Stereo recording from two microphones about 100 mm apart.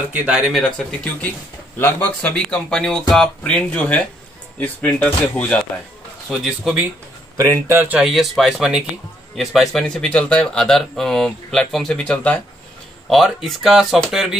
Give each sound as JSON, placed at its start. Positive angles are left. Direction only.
{"t": 0.1, "sound": "speech", "side_deg": -10}
{"t": 1.8, "sound": "speech", "side_deg": 20}
{"t": 6.3, "sound": "speech", "side_deg": -5}
{"t": 7.3, "sound": "speech", "side_deg": -35}
{"t": 7.7, "sound": "speech", "side_deg": -20}
{"t": 8.0, "sound": "speech", "side_deg": 0}
{"t": 13.1, "sound": "speech", "side_deg": 0}